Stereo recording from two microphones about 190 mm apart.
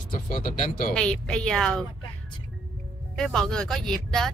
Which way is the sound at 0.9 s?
5° left (ahead or behind).